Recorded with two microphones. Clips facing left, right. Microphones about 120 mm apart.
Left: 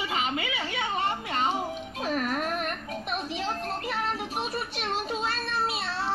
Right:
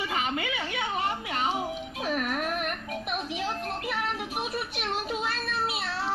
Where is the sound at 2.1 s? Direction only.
35° left (ahead or behind).